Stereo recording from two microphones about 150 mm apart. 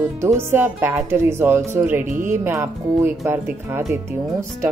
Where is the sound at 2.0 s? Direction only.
60° right (ahead or behind).